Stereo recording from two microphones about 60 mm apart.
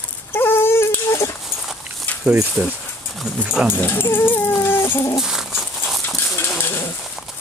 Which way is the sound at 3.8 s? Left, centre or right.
Left.